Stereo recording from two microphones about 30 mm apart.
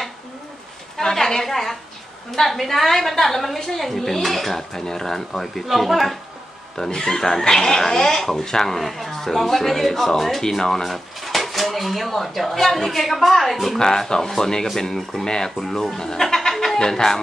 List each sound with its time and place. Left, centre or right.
0.9 s a sound: centre
1.4 s speech: centre
4.6 s speech: centre
5.4 s speech: centre
7.0 s speech: centre
8.7 s speech: centre
11.1 s speech: centre
13.7 s speech: left
15.6 s speech: centre
16.3 s a sound: centre
16.9 s speech: centre